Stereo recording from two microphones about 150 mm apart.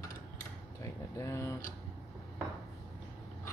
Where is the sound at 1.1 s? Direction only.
20° left (ahead or behind).